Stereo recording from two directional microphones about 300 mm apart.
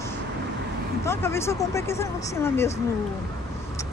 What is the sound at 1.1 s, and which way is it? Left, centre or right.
Speech, centre.